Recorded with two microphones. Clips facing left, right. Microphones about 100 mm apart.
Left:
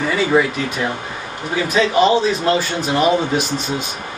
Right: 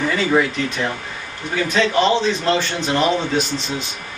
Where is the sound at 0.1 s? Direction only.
10° left (ahead or behind).